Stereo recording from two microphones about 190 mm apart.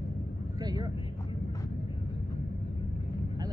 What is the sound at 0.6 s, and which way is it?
Vehicle, 20° right (ahead or behind).